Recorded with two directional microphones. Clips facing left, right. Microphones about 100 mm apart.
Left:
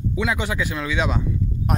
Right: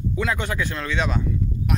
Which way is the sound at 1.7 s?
40° left (ahead or behind).